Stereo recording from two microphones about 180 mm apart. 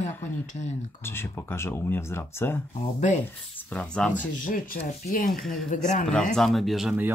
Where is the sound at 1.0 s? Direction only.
15° left (ahead or behind).